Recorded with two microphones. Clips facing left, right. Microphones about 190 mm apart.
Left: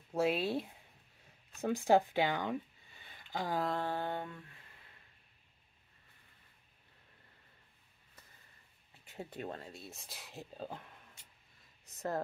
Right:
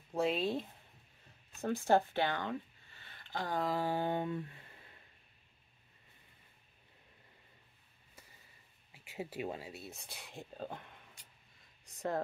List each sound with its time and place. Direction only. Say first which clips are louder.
0.1 s speech: left 1 dB; 5° left (ahead or behind)
1.6 s speech: left 1 dB; 15° left (ahead or behind)
3.5 s speech: right 1 dB; centre (ahead or behind)
3.8 s a sound: right 3 dB; 15° right (ahead or behind)
8.9 s speech: right 3 dB; 10° right (ahead or behind)
11.8 s a sound: right 1 dB; centre (ahead or behind)